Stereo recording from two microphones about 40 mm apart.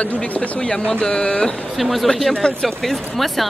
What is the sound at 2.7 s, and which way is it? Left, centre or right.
Speech, centre.